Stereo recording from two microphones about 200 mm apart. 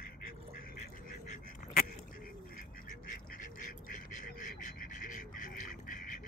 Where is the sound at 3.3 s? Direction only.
40° left (ahead or behind).